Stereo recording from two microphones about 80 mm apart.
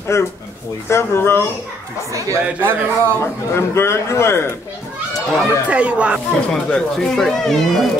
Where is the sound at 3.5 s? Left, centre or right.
Left.